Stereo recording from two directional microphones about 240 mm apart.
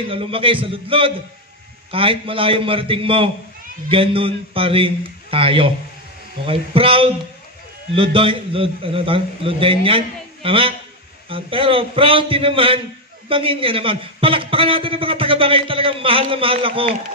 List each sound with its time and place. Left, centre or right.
0.1 s a man's voice: right